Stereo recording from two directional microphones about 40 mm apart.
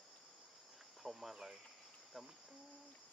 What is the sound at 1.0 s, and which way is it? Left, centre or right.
Speech, centre.